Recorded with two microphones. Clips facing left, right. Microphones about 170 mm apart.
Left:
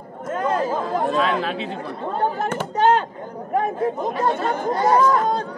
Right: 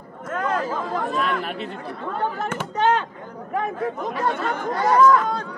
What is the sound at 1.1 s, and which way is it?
Speech, 90° left.